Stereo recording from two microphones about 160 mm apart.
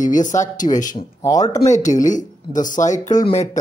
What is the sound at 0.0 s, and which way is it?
Speech, 50° left (ahead or behind).